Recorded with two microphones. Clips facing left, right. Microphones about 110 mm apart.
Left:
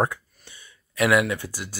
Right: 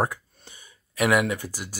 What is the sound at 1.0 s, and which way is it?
Speech, 35° right (ahead or behind).